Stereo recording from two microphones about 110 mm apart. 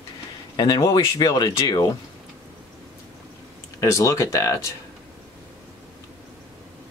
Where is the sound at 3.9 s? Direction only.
30° left (ahead or behind).